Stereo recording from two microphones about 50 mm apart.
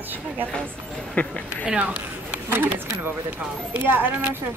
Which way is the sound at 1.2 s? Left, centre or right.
Left.